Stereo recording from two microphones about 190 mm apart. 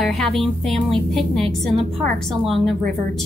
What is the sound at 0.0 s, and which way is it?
A woman's voice, centre (ahead or behind).